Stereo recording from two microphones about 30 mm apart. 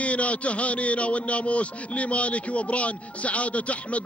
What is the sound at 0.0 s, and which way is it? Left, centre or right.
A man's voice, left.